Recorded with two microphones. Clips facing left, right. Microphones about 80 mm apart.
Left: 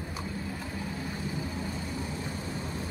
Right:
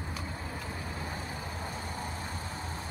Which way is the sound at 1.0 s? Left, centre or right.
Right.